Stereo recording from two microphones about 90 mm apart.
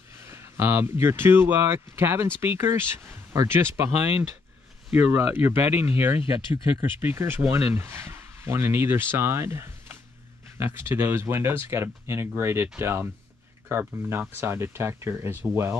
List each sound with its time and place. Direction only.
0.2 s speech: 30° right (ahead or behind)
4.9 s speech: 20° right (ahead or behind)